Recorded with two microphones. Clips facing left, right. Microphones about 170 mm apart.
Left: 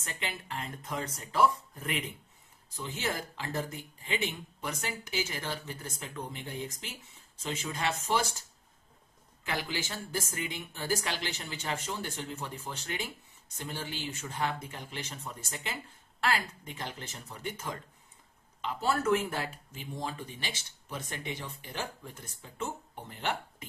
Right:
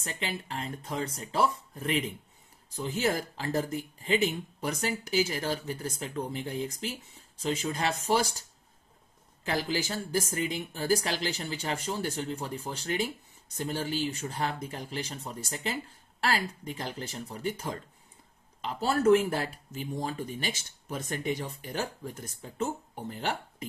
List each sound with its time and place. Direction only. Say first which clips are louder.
0.0 s speech: right 4 dB; 35° right (ahead or behind)